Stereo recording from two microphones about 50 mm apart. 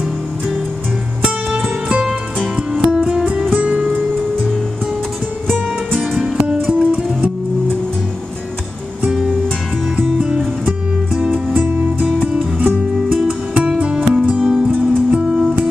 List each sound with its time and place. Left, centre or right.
2.5 s music: centre
6.5 s music: right
9.1 s music: centre